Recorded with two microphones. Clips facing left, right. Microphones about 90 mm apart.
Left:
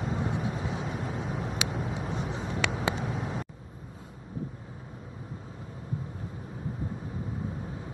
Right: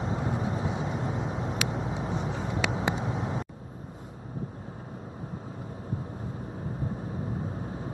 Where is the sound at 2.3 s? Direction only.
5° right (ahead or behind).